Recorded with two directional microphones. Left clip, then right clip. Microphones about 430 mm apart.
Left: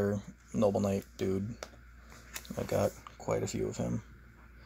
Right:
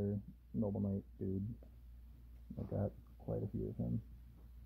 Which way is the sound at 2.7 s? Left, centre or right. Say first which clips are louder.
Left 13 dB; centre.